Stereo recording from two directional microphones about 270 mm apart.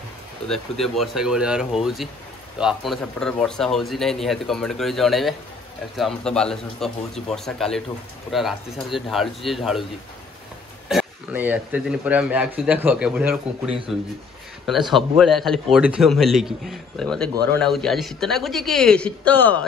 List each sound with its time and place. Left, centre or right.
0.5 s a man's voice: centre
10.9 s a man's voice: centre